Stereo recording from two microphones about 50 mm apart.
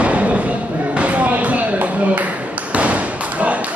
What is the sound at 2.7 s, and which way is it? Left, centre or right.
Thump, right.